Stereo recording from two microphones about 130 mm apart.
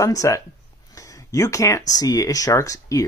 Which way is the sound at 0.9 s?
25° left (ahead or behind).